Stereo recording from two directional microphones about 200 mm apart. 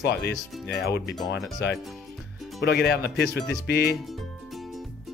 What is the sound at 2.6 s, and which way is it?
Speech, 55° left (ahead or behind).